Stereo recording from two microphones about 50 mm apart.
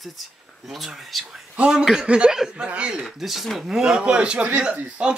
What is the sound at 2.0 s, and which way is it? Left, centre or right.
Speech, right.